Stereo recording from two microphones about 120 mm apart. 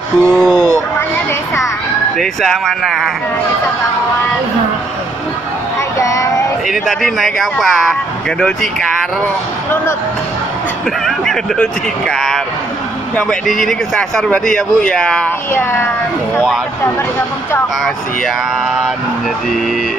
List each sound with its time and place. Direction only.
0.2 s speech: centre (ahead or behind)
1.1 s music: 20° left (ahead or behind)
2.1 s speech: centre (ahead or behind)
5.9 s child singing: 25° left (ahead or behind)
6.7 s speech: centre (ahead or behind)
11.1 s speech: 5° left (ahead or behind)
13.5 s speech: centre (ahead or behind)